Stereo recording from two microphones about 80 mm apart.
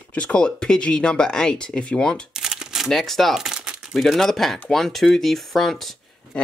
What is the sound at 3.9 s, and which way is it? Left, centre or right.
Speech, centre.